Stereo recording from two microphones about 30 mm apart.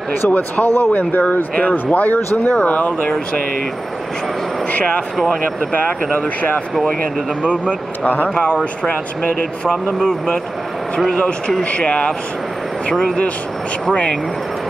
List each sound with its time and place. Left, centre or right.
0.3 s speech: left
1.6 s speech: left
6.1 s speech: left
7.5 s speech: left
11.1 s speech: left